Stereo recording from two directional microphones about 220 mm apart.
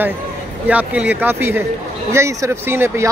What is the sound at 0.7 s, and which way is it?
Speech, 5° right (ahead or behind).